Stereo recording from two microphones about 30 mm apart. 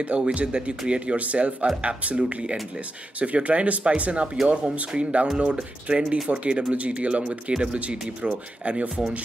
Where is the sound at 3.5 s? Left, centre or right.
Right.